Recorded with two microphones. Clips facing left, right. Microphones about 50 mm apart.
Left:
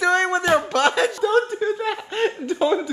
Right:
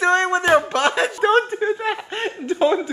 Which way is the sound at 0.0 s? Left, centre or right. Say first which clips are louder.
Right 2 dB; right.